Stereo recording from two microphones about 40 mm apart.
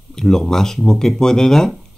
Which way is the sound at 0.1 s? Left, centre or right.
Centre.